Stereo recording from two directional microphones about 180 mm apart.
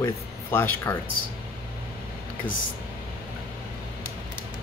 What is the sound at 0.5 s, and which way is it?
Speech, 15° left (ahead or behind).